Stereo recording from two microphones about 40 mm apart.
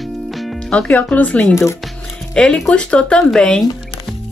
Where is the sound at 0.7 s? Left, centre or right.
Left.